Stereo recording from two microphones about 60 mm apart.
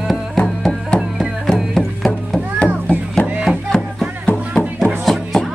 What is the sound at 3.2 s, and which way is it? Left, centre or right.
Music, left.